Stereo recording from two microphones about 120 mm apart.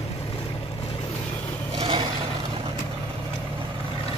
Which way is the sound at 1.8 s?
50° right (ahead or behind).